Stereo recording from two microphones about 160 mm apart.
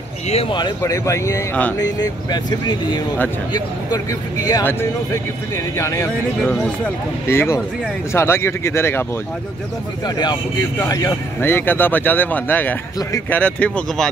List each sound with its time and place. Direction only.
0.3 s speech: 35° left (ahead or behind)
7.2 s speech: 15° left (ahead or behind)
10.0 s speech: 25° left (ahead or behind); by 14.1 s 5° left (ahead or behind)